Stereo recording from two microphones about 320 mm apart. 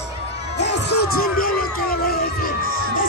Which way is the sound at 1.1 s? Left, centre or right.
Left.